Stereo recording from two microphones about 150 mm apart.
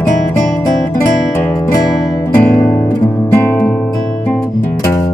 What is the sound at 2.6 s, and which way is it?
Guitar, 20° left (ahead or behind).